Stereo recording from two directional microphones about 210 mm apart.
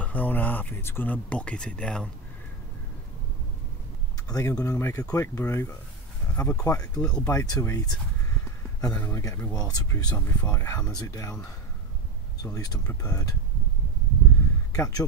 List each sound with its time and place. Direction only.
0.0 s speech: 10° left (ahead or behind)
4.3 s speech: 15° left (ahead or behind)
12.4 s speech: 15° left (ahead or behind)
14.7 s speech: 15° left (ahead or behind)